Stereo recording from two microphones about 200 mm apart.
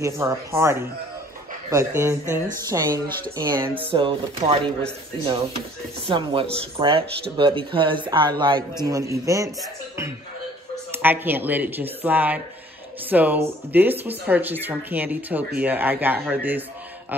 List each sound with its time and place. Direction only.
0.0 s a man's voice: 15° right (ahead or behind)
10.9 s speech: 10° right (ahead or behind)